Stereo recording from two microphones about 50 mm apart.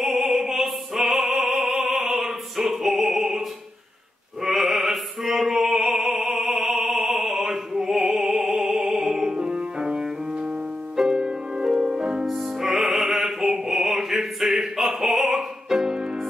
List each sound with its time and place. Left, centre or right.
0.0 s opera: centre
4.4 s music: centre